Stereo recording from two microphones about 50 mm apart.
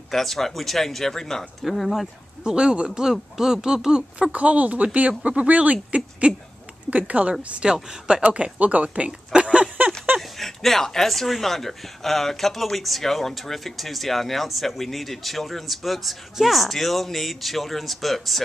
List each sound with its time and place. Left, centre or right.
0.1 s speech: centre
2.4 s speech: centre
4.3 s speech: right
7.4 s speech: centre
8.2 s speech: right
9.3 s a sound: right
10.1 s speech: centre